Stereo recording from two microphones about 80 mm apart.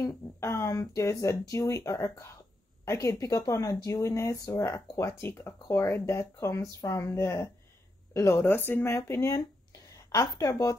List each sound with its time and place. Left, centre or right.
0.0 s speech: left
8.9 s speech: left
10.1 s a woman's voice: left